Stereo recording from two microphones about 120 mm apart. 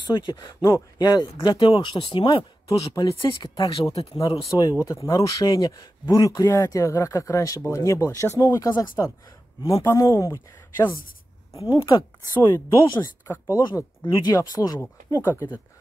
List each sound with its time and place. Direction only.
0.1 s speech: 35° left (ahead or behind); by 4.2 s 50° left (ahead or behind)
4.5 s speech: 30° left (ahead or behind)
11.6 s speech: 25° left (ahead or behind)
14.0 s speech: 40° left (ahead or behind)
14.3 s speech: 30° left (ahead or behind)